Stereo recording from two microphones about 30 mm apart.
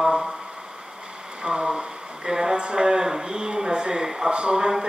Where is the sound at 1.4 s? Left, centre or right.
Right.